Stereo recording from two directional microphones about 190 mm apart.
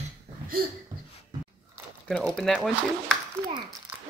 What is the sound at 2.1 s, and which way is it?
Speech, centre (ahead or behind).